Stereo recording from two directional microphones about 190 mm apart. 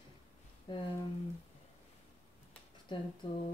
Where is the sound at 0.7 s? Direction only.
25° left (ahead or behind).